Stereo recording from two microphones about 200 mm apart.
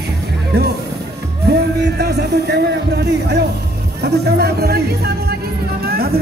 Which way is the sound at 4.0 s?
55° right (ahead or behind).